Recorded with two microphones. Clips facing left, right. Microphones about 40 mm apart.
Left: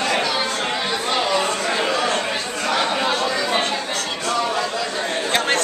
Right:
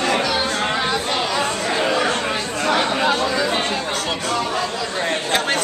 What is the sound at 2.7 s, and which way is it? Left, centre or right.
Chatter, centre.